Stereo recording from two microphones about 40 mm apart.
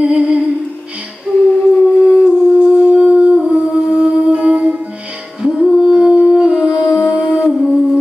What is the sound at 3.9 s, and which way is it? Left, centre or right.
Music, right.